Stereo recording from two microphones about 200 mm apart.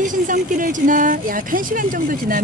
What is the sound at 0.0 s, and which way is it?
Speech, 40° right (ahead or behind).